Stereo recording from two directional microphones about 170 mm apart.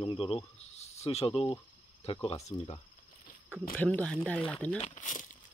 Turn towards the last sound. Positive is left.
turn(degrees=50)  # may be behind; listen again after turning